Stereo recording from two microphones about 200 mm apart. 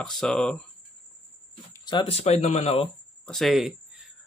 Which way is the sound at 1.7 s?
20° left (ahead or behind).